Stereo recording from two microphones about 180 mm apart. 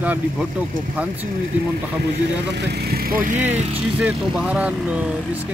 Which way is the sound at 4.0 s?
5° right (ahead or behind).